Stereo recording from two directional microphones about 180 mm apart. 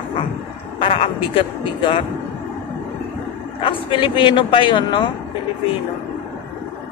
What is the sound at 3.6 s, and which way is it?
A man's voice, 25° left (ahead or behind).